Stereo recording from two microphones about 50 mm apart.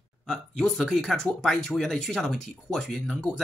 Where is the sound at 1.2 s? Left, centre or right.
Centre.